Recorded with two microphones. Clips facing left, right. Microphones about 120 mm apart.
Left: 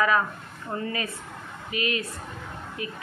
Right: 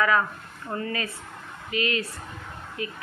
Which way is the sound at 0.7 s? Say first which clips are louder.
Even; 20° left (ahead or behind).